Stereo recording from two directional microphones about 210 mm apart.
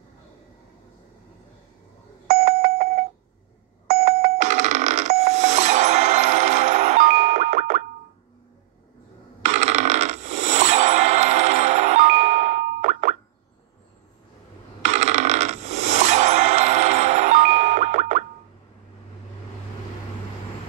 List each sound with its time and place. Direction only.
2.2 s alarm clock: 40° right (ahead or behind)
3.8 s doorbell: 40° right (ahead or behind)
9.4 s music: 35° right (ahead or behind)
14.8 s music: 35° right (ahead or behind)